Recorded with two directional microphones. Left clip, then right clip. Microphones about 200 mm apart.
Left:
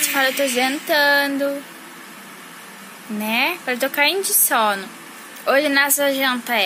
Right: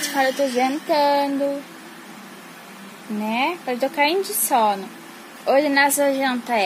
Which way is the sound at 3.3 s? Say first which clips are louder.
Left 3 dB; 15° right (ahead or behind).